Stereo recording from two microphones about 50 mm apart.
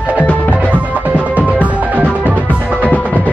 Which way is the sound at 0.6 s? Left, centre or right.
Right.